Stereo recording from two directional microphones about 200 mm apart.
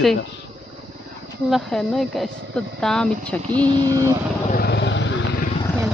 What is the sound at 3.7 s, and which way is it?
Vehicle, 20° right (ahead or behind).